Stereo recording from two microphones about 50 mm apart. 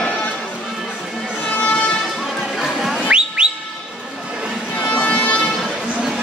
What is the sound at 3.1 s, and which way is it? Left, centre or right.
Whistle, right.